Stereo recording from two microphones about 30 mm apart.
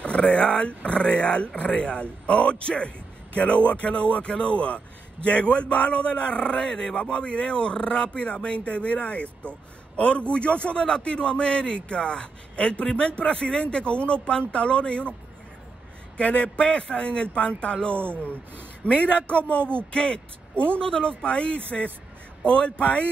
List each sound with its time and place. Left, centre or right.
0.3 s a man's voice: left
6.7 s speech: centre
7.0 s a man's voice: left
16.2 s a man's voice: left
18.8 s speech: left
19.5 s a man's voice: left
20.8 s a man's voice: left